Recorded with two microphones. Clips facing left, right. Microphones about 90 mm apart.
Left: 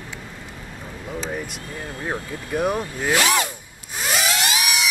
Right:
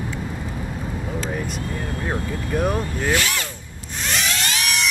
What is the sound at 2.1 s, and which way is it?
Speech, 5° left (ahead or behind).